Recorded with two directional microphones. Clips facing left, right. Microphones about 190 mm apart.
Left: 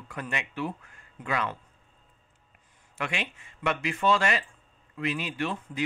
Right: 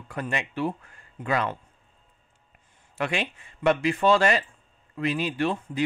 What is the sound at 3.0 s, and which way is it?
Speech, 35° right (ahead or behind).